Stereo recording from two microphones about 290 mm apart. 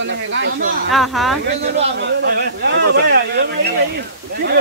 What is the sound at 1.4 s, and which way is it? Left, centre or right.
Speech, right.